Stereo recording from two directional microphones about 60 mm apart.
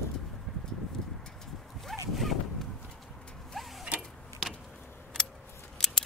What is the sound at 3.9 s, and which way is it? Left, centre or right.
Vehicle, centre.